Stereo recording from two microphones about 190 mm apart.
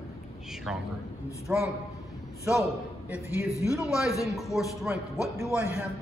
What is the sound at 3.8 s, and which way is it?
A man's voice, centre (ahead or behind).